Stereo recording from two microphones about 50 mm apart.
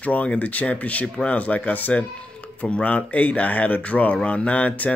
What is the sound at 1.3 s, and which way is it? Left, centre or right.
Speech, left.